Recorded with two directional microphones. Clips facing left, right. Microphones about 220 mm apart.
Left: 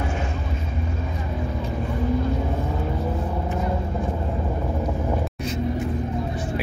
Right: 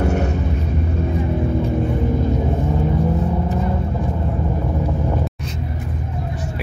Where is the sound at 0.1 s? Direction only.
70° right (ahead or behind).